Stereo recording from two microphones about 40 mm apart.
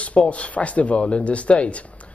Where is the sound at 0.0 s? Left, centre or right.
Left.